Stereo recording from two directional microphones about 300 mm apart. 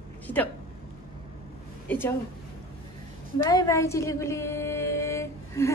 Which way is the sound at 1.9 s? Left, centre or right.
Centre.